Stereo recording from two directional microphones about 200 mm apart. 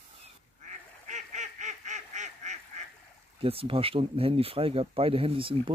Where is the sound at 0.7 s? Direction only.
35° right (ahead or behind).